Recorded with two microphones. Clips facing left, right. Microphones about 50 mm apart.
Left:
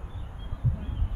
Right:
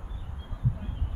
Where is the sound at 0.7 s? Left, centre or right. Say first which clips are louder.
Left 2 dB; centre.